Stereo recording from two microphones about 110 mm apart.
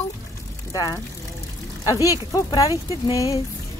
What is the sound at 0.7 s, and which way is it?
A woman's voice, 35° left (ahead or behind).